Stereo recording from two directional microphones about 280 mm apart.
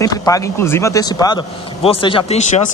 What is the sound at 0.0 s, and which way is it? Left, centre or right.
Speech, centre.